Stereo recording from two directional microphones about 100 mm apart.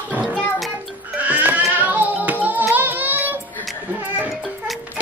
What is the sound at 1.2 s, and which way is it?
Music, 15° right (ahead or behind).